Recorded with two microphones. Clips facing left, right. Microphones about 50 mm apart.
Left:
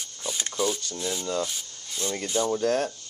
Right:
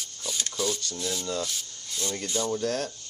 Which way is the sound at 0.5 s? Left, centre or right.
Centre.